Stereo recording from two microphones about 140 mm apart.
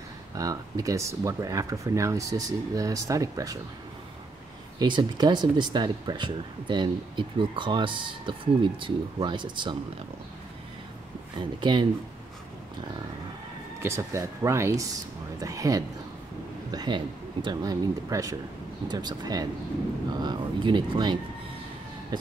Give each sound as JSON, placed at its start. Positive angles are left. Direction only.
{"t": 0.4, "sound": "speech", "side_deg": -25}
{"t": 4.7, "sound": "speech", "side_deg": -30}
{"t": 11.3, "sound": "speech", "side_deg": -35}
{"t": 13.8, "sound": "speech", "side_deg": -20}
{"t": 20.2, "sound": "vehicle", "side_deg": -35}